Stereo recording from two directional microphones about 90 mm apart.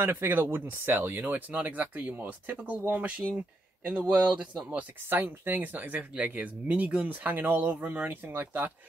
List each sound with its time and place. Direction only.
0.0 s speech: 25° right (ahead or behind)
3.9 s speech: 10° right (ahead or behind)